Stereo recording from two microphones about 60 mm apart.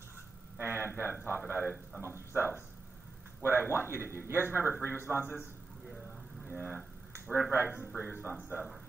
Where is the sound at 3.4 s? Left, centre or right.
Right.